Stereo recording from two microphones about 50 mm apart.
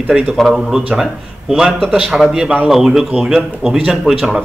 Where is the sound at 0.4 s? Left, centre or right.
Centre.